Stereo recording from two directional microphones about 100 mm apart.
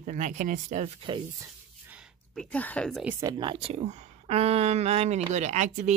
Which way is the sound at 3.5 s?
80° right.